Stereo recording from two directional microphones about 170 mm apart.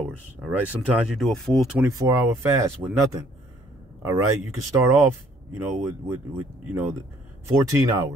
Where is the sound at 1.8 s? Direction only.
15° right (ahead or behind).